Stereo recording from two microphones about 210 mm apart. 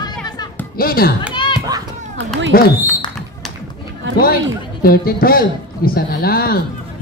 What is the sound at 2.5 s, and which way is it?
Speech, 45° left (ahead or behind).